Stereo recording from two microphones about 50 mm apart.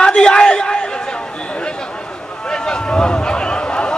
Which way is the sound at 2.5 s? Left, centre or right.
Centre.